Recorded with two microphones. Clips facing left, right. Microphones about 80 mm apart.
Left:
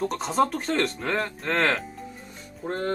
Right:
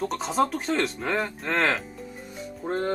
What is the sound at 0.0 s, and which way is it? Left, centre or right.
Speech, centre.